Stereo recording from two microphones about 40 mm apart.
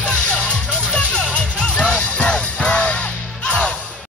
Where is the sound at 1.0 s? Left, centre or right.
Left.